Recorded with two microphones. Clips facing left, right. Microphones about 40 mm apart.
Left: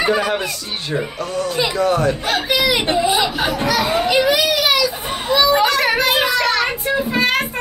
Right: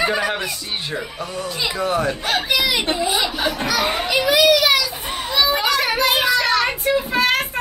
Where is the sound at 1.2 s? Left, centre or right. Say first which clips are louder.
Left 5 dB; centre.